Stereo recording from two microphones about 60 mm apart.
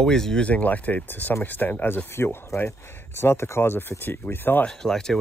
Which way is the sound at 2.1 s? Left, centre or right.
Left.